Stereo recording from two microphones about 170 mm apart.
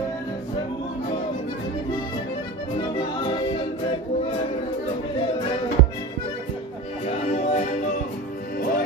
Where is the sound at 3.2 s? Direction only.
30° left (ahead or behind).